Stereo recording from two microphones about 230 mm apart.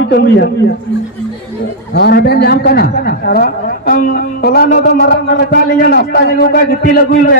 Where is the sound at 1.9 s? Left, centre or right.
Left.